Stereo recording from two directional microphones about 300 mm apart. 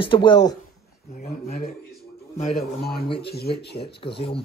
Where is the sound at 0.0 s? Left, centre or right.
Centre.